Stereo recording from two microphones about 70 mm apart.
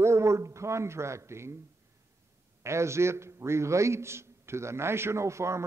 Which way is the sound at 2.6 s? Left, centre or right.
Right.